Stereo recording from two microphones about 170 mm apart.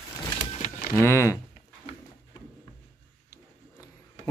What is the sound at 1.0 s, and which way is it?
Speech, 15° left (ahead or behind).